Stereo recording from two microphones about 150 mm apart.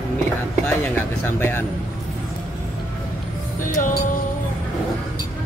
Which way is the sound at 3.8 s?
60° left (ahead or behind).